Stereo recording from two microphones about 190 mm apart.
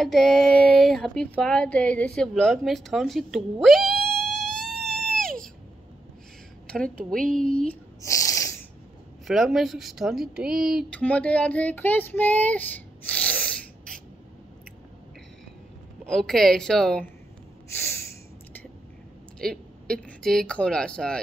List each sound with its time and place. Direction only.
0.0 s speech: centre (ahead or behind)
3.6 s a sound: centre (ahead or behind)
6.7 s speech: 5° left (ahead or behind)
8.0 s a sound: 15° left (ahead or behind)
9.3 s a woman's voice: centre (ahead or behind)
16.1 s speech: centre (ahead or behind)
19.4 s speech: 5° left (ahead or behind)